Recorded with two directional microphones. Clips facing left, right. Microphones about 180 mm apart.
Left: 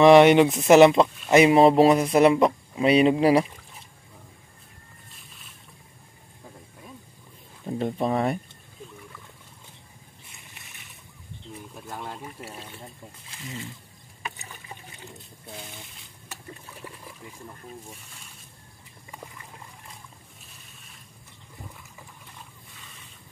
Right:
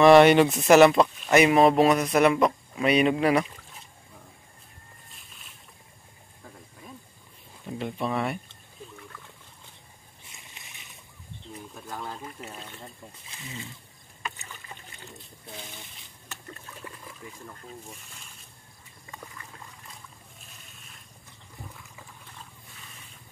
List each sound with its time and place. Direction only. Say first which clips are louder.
0.0 s speech: left 1 dB; 20° left (ahead or behind)
7.6 s speech: left 5 dB; 40° left (ahead or behind)
11.7 s speech: even; 5° left (ahead or behind)
14.2 s rowboat: even; 10° left (ahead or behind)
15.5 s a sound: left 1 dB; centre (ahead or behind)
16.6 s water: left 1 dB; 10° left (ahead or behind)